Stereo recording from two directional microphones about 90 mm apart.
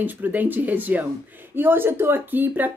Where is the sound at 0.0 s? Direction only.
20° right (ahead or behind).